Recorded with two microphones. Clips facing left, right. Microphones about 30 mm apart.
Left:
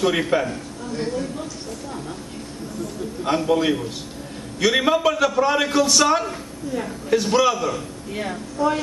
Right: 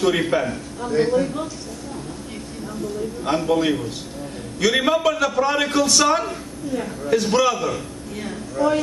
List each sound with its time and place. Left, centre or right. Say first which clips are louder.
0.0 s a man's voice: right 1 dB; centre
0.9 s a man's voice: right 7 dB; centre
3.3 s a man's voice: even; centre